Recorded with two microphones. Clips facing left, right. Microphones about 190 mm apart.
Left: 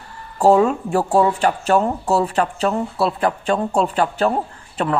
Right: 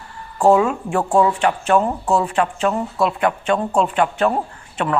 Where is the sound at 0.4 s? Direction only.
35° left (ahead or behind).